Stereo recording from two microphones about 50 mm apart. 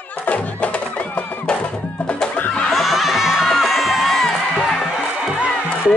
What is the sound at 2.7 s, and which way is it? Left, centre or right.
Music, centre.